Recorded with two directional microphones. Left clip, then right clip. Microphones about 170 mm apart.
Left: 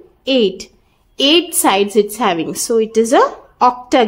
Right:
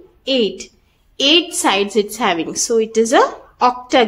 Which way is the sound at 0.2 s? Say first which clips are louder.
Left 3 dB; 30° left (ahead or behind).